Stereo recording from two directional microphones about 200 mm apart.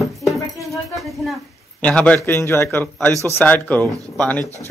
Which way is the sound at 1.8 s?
5° left (ahead or behind).